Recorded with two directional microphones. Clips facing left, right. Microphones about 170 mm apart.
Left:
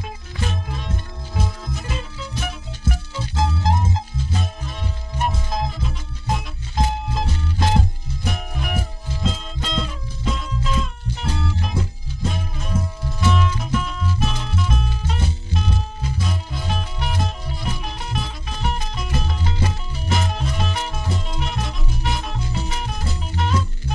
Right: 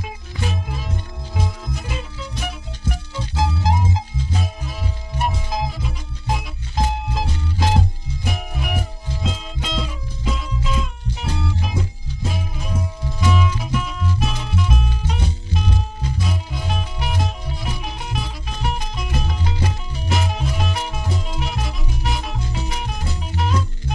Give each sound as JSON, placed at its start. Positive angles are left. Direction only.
{"t": 0.0, "sound": "music", "side_deg": -5}